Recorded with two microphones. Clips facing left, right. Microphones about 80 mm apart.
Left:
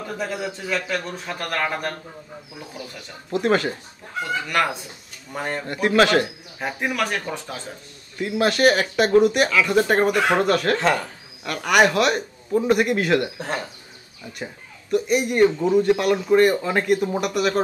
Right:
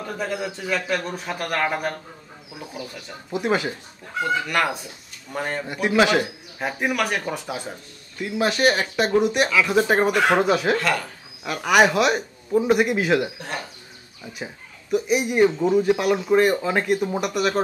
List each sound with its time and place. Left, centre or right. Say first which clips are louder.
0.0 s a man's voice: even; centre
3.3 s a man's voice: left 3 dB; centre
10.8 s speech: left 3 dB; left
11.4 s a man's voice: even; centre
14.4 s a man's voice: left 1 dB; centre